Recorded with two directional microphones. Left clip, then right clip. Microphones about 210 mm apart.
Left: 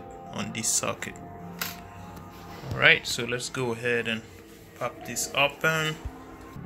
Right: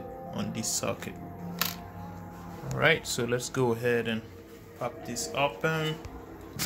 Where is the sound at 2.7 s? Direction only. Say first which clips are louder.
Left 5 dB; 20° right (ahead or behind); by 5.9 s 5° right (ahead or behind).